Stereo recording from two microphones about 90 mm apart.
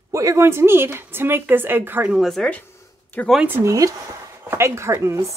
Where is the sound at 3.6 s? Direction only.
35° right (ahead or behind).